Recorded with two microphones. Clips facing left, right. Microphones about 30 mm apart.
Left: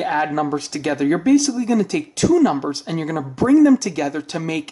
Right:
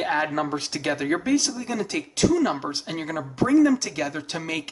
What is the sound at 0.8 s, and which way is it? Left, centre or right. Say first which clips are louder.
Speech: left 7 dB; centre.